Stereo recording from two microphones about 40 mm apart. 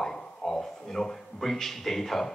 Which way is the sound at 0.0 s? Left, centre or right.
Centre.